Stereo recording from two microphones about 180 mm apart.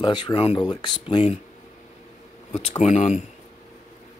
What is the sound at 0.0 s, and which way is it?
Speech, 25° left (ahead or behind).